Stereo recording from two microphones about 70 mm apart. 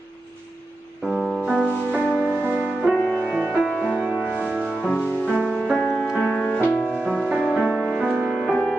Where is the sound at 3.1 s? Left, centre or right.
Centre.